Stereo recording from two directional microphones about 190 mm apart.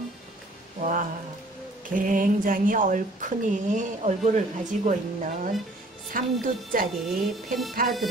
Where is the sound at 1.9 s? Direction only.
45° right (ahead or behind).